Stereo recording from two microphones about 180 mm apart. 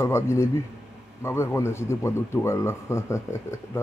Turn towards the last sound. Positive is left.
turn(degrees=15)  # may be behind; listen again after turning